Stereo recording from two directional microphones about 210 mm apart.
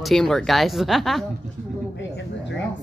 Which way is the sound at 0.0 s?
Centre (ahead or behind).